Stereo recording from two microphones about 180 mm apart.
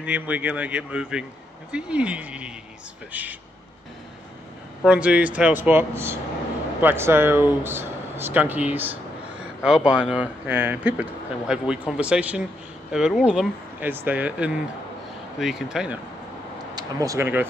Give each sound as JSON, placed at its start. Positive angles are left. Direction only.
{"t": 0.0, "sound": "speech", "side_deg": -10}
{"t": 4.8, "sound": "speech", "side_deg": -5}
{"t": 16.7, "sound": "speech", "side_deg": -20}